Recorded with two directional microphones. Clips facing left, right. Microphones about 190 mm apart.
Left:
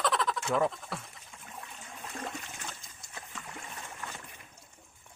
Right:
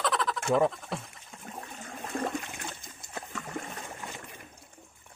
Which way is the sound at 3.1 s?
50° right (ahead or behind).